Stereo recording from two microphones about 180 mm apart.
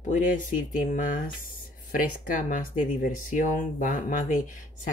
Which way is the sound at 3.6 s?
45° left (ahead or behind).